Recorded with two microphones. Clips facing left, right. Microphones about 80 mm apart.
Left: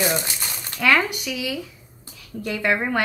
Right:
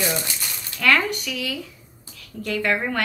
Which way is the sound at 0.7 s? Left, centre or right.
Centre.